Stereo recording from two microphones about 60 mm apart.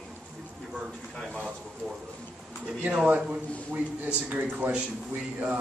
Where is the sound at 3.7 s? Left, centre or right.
Centre.